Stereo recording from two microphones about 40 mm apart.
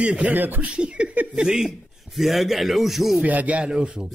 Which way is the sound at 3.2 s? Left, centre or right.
Right.